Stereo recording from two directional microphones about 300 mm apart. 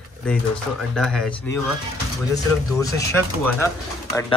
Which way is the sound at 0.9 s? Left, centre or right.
Centre.